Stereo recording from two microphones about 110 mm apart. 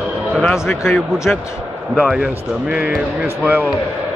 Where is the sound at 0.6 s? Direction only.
25° left (ahead or behind).